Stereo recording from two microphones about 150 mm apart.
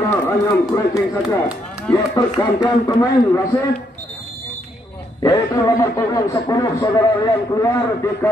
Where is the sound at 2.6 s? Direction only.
25° left (ahead or behind).